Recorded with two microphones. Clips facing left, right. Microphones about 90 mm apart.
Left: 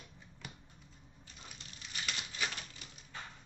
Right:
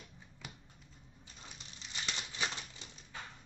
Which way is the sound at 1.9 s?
25° right (ahead or behind).